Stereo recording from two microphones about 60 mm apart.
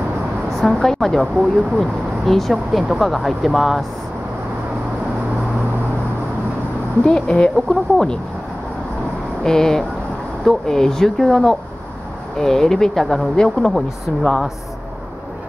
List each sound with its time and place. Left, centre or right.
0.6 s speech: centre
7.1 s speech: centre
7.5 s speech: centre
9.4 s speech: centre